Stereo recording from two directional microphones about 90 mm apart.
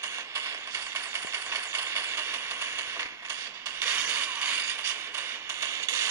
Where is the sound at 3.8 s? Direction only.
20° right (ahead or behind).